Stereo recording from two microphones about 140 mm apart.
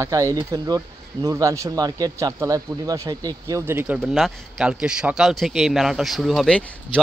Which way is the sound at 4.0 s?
5° right (ahead or behind).